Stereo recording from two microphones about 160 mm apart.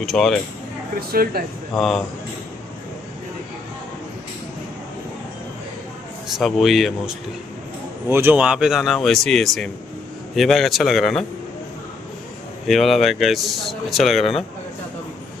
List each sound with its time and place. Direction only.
0.0 s speech: centre (ahead or behind)
1.1 s speech: 70° right (ahead or behind)
1.8 s speech: centre (ahead or behind)
6.3 s speech: centre (ahead or behind)
8.1 s speech: 15° right (ahead or behind)
12.6 s speech: centre (ahead or behind)